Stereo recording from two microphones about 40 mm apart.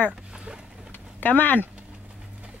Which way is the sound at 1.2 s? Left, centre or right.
Left.